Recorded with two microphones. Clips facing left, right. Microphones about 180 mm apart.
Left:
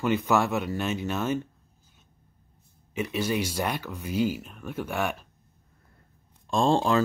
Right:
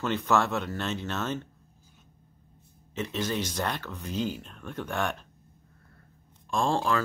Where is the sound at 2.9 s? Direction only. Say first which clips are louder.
Left 3 dB; 10° left (ahead or behind).